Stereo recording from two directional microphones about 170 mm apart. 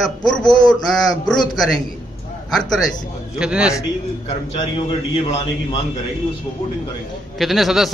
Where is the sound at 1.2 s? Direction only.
5° left (ahead or behind).